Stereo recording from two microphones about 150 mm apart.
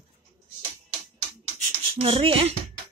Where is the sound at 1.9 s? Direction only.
40° right (ahead or behind).